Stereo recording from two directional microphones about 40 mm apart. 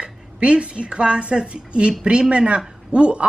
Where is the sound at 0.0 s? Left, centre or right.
Right.